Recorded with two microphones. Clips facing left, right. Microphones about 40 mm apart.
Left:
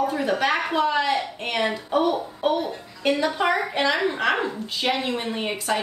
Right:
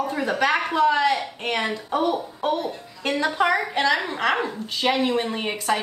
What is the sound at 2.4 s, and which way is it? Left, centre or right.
Speech, left.